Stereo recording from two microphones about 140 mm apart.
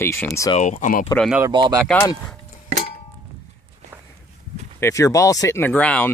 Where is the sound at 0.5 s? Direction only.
55° left (ahead or behind).